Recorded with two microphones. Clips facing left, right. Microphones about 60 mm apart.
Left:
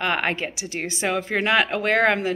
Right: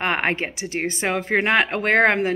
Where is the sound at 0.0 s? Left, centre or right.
Right.